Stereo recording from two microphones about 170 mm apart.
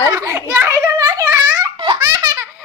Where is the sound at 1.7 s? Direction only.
25° right (ahead or behind).